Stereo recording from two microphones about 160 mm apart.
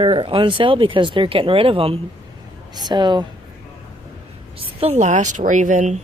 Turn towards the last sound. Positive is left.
turn(degrees=-50)  # may be behind; listen again after turning